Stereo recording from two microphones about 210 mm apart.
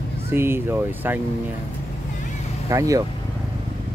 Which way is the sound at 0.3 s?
10° right (ahead or behind).